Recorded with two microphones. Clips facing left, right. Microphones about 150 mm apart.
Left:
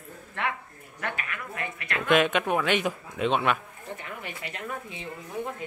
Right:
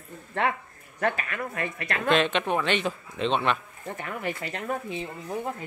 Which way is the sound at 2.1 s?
10° left (ahead or behind).